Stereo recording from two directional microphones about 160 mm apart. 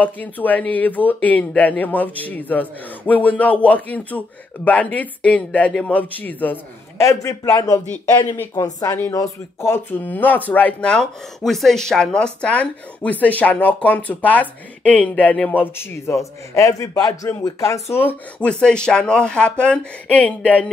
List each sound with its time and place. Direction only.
0.0 s speech: 10° left (ahead or behind)